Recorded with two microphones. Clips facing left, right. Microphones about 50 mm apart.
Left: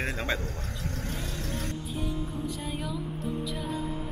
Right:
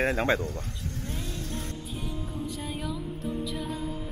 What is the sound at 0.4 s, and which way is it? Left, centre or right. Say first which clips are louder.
Speech: right 3 dB; left.